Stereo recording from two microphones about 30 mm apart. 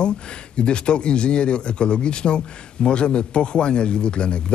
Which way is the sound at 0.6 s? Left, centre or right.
Left.